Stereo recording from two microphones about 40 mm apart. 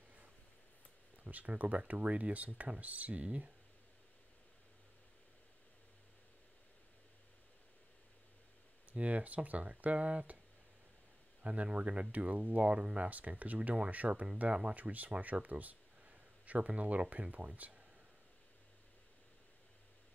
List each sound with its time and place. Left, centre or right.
1.2 s speech: right
3.3 s speech: right
8.9 s speech: right
11.4 s speech: right